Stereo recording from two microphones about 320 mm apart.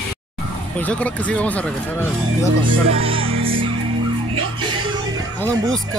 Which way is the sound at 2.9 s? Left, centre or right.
Centre.